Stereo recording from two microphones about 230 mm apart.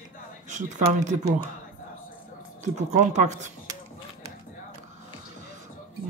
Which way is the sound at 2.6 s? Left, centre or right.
Right.